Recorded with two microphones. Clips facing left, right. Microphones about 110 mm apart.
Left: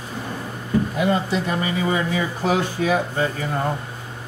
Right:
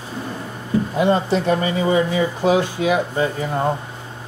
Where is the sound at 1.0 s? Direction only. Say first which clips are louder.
Right 7 dB; 30° right (ahead or behind).